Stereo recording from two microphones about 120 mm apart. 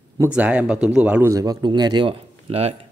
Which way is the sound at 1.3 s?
30° right (ahead or behind).